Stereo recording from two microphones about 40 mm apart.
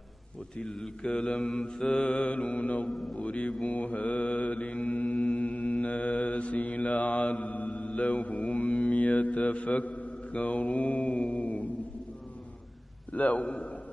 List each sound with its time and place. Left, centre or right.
0.7 s speech: centre
1.0 s mantra: left
2.9 s a man's voice: centre
3.2 s a man's voice: left
3.6 s mantra: left
13.1 s a man's voice: left